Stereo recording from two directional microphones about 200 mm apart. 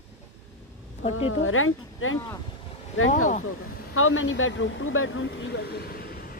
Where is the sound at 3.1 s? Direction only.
40° left (ahead or behind).